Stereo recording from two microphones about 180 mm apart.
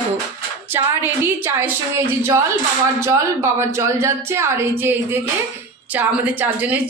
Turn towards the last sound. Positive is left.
turn(degrees=-10)  # may be behind; listen again after turning